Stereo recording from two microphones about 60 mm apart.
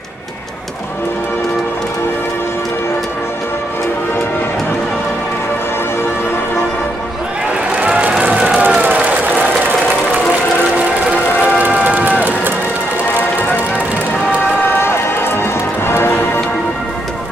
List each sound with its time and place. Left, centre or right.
7.7 s music: centre
11.3 s run: right
14.8 s music: left